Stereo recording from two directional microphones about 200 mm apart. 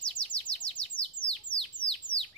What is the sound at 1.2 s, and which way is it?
Bird, 40° left (ahead or behind).